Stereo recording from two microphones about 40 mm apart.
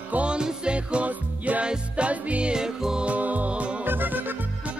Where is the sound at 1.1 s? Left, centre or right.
Right.